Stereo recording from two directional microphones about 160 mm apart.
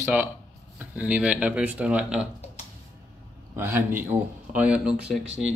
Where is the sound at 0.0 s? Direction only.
10° right (ahead or behind).